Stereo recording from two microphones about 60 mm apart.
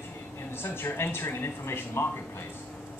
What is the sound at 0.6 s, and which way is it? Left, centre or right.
Speech, left.